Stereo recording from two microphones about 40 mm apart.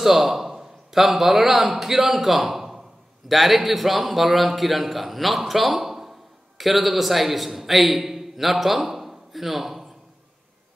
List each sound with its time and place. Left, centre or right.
0.0 s a man's voice: centre